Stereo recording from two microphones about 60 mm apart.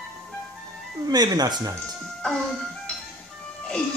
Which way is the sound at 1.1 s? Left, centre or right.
Right.